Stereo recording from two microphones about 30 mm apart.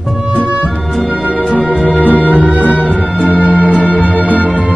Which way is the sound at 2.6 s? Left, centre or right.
Left.